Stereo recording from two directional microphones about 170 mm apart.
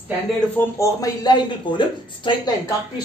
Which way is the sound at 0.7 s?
20° left (ahead or behind).